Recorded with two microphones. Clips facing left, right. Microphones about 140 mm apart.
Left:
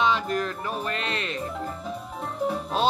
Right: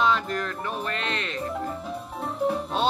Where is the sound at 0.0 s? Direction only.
5° left (ahead or behind).